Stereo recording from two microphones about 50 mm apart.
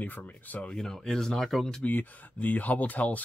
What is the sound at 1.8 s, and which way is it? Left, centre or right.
Speech, left.